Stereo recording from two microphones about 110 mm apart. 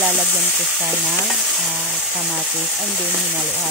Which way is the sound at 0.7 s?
15° right (ahead or behind).